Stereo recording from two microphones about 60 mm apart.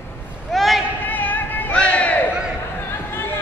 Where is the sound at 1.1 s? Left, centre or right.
Left.